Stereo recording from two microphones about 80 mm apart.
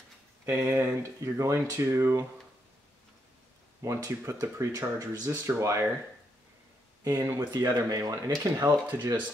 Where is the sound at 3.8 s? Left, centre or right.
Right.